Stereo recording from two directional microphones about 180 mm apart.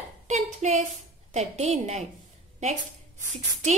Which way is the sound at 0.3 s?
40° right (ahead or behind).